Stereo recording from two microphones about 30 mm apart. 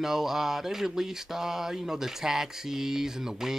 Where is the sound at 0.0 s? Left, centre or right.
Centre.